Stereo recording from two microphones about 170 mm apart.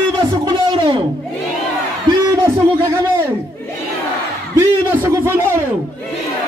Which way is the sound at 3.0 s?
15° right (ahead or behind).